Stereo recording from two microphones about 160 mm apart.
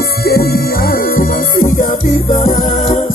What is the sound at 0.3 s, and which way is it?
Music, 70° left (ahead or behind).